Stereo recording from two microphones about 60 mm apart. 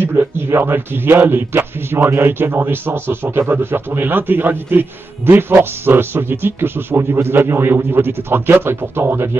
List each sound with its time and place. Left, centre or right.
0.0 s speech: right